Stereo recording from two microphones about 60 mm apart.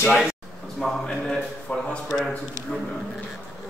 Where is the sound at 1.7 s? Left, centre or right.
Left.